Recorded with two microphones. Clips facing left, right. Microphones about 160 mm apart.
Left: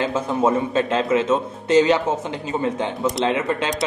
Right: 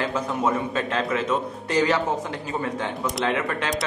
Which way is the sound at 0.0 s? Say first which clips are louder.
Left 4 dB; 25° left (ahead or behind).